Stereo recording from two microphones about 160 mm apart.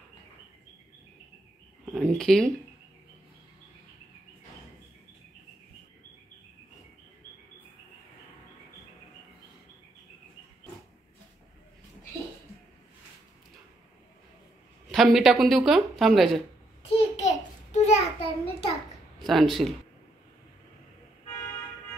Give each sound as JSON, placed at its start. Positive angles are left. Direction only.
{"t": 1.9, "sound": "speech", "side_deg": 0}
{"t": 14.9, "sound": "speech", "side_deg": 0}
{"t": 17.2, "sound": "a sound", "side_deg": 45}
{"t": 19.1, "sound": "speech", "side_deg": 0}